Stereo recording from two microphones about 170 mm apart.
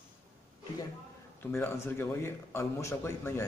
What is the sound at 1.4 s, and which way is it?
Speech, 15° left (ahead or behind).